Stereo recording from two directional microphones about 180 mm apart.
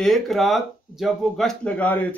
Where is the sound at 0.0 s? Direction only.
Centre (ahead or behind).